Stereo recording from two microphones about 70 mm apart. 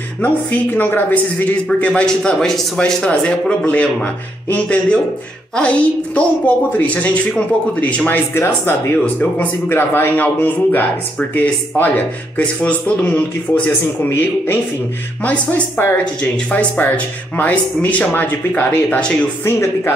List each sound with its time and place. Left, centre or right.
0.2 s a man's voice: left
8.4 s speech: left
9.0 s a man's voice: left
14.0 s speech: left
15.2 s a man's voice: centre
18.9 s speech: centre
19.4 s speech: left